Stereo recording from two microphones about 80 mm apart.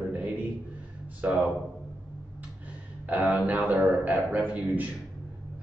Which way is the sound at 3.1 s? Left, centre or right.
Centre.